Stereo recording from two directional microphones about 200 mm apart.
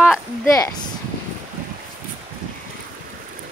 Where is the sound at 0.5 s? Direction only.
20° left (ahead or behind).